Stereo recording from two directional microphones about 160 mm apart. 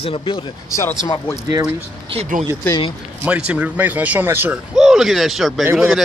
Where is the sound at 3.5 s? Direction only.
10° right (ahead or behind).